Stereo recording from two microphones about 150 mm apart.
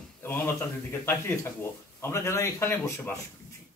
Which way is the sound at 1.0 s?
15° left (ahead or behind).